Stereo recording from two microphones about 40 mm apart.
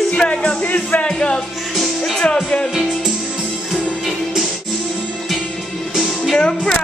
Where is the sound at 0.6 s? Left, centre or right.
Left.